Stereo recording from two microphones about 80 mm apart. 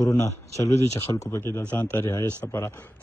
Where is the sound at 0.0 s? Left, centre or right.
Left.